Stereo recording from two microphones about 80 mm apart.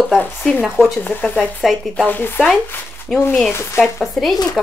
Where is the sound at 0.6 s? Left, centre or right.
Centre.